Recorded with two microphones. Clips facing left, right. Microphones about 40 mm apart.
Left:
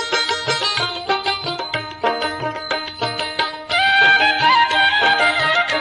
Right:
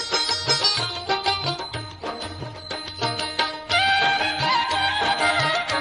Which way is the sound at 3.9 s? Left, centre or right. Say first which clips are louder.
Left 8 dB; left.